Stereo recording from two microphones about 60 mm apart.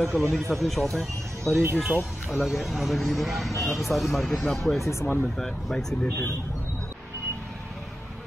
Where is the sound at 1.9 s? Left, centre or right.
Right.